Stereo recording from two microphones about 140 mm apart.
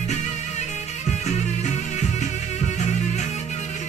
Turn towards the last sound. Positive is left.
turn(degrees=55)  # may be behind; listen again after turning